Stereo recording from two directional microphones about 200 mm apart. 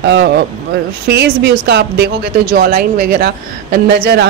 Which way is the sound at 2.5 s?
45° right (ahead or behind).